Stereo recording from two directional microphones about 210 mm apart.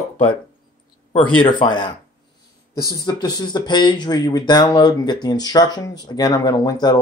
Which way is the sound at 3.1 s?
20° left (ahead or behind).